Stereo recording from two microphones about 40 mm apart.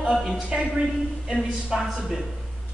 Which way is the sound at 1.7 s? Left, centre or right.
Centre.